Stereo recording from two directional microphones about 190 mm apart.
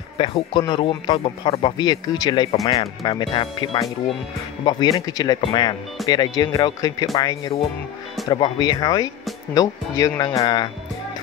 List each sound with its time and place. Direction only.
0.2 s speech: 25° left (ahead or behind)